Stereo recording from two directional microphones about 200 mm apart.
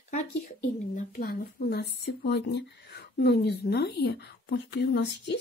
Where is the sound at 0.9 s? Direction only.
45° left (ahead or behind).